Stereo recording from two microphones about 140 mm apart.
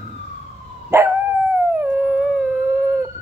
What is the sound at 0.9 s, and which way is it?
Dog, 20° right (ahead or behind).